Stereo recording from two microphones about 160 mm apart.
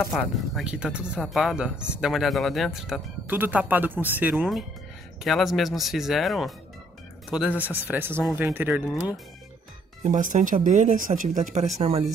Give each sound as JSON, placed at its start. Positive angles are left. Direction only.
{"t": 0.1, "sound": "speech", "side_deg": -5}
{"t": 10.0, "sound": "speech", "side_deg": -50}